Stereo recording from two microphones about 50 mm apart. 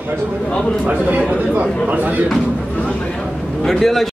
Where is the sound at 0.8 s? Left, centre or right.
Right.